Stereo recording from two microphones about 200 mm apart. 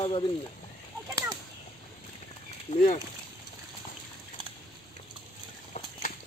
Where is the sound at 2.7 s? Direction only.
25° left (ahead or behind).